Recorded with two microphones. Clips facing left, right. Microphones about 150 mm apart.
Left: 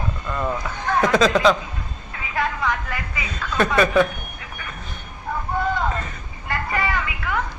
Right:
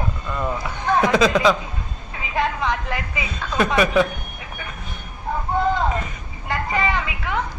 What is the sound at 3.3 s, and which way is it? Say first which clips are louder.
Speech: even; 10° right (ahead or behind).